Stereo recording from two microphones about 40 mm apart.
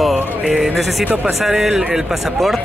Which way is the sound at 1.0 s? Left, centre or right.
Right.